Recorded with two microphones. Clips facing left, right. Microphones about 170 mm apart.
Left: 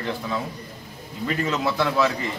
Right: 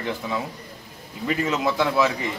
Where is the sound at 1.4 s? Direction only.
15° right (ahead or behind).